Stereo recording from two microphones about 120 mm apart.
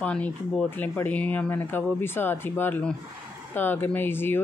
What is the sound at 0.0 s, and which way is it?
Speech, 10° left (ahead or behind).